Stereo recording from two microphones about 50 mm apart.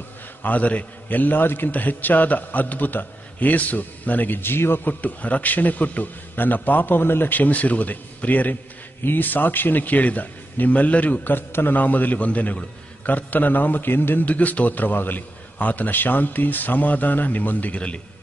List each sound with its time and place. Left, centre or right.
0.4 s a man's voice: left
14.2 s a man's voice: left